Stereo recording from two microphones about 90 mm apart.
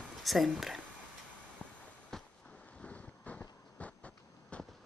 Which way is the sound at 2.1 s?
5° left (ahead or behind).